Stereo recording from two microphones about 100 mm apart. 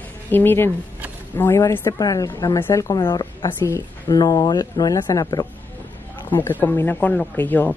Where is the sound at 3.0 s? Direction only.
50° left (ahead or behind).